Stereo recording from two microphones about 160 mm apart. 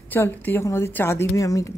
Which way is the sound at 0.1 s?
10° left (ahead or behind).